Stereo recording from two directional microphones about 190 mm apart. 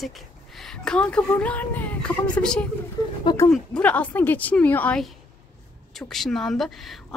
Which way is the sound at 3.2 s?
15° left (ahead or behind).